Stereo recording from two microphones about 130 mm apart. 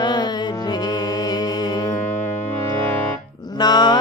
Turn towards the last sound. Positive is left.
turn(degrees=35)  # may be behind; listen again after turning